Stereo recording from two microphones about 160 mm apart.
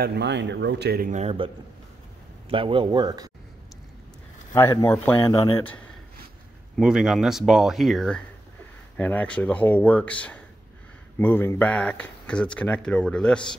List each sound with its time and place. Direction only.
0.0 s speech: 90° right
1.1 s speech: 40° right (ahead or behind)
2.5 s speech: 35° right (ahead or behind)
4.5 s speech: 15° left (ahead or behind)
6.8 s speech: 5° right (ahead or behind)